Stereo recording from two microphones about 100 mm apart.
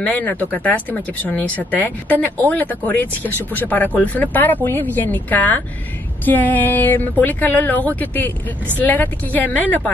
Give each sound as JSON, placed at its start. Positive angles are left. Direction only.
{"t": 0.0, "sound": "speech", "side_deg": 15}